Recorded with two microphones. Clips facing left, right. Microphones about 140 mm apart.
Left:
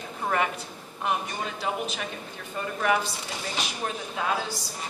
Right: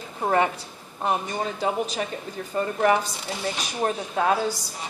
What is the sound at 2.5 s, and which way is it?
Speech, 40° right (ahead or behind).